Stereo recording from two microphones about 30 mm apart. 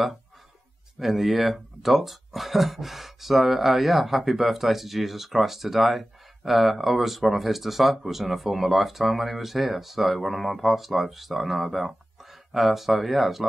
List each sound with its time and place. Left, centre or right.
0.9 s speech: centre